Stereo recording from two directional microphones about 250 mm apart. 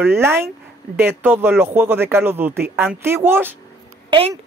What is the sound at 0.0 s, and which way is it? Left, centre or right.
Speech, centre.